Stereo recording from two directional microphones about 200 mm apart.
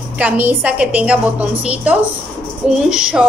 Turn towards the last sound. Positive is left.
turn(degrees=-5)  # may be behind; listen again after turning